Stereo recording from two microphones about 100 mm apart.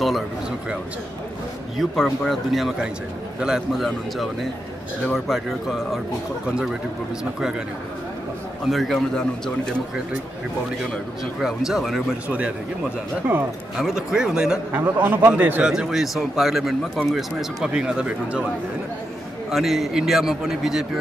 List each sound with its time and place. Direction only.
1.8 s a man's voice: centre (ahead or behind)
8.6 s speech: centre (ahead or behind)
11.4 s speech: 5° right (ahead or behind)
13.7 s a man's voice: 5° right (ahead or behind)
14.7 s a man's voice: 20° right (ahead or behind)
15.6 s speech: 5° right (ahead or behind)
19.5 s speech: centre (ahead or behind)